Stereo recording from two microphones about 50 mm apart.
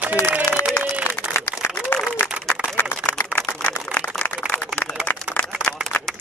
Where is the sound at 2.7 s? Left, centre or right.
Left.